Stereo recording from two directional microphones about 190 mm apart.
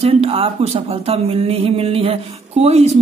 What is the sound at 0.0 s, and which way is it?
Speech, 30° right (ahead or behind).